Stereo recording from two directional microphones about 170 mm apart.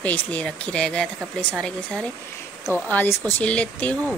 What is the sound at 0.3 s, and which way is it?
Speech, 5° left (ahead or behind).